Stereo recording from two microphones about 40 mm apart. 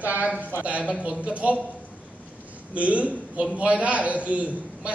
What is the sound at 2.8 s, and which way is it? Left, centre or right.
A man's voice, right.